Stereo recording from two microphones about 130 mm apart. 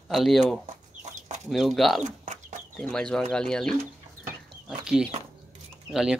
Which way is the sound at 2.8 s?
5° left (ahead or behind).